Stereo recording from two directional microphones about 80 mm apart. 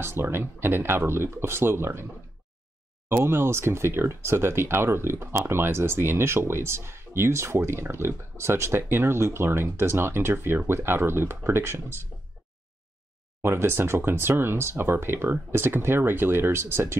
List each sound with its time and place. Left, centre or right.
0.0 s speech: right
3.1 s speech: right
13.4 s speech: right